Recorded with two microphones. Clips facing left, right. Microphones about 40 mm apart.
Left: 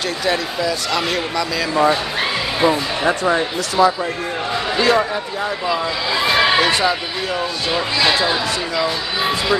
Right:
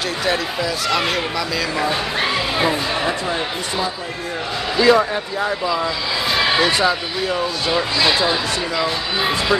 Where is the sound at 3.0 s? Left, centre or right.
Left.